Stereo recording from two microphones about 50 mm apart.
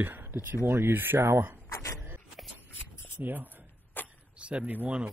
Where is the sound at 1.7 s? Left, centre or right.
Left.